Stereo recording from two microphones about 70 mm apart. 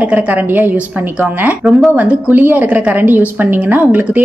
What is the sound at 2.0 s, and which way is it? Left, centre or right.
A woman's voice, right.